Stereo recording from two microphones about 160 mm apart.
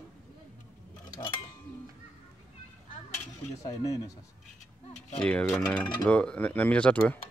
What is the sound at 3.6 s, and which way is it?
Speech, 20° left (ahead or behind).